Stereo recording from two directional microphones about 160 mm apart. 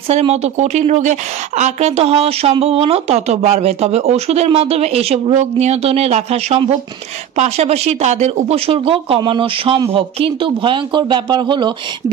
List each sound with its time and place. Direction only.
0.1 s a woman's voice: 40° right (ahead or behind)